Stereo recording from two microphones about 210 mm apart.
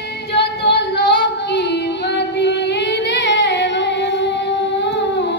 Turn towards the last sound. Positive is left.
turn(degrees=55)  # may be behind; listen again after turning